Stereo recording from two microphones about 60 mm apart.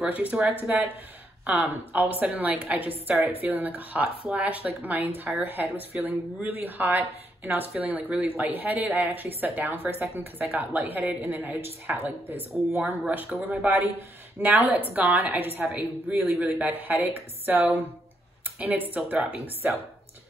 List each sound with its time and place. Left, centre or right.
0.0 s speech: right
7.7 s speech: right
13.1 s speech: right
13.7 s speech: right
19.0 s speech: right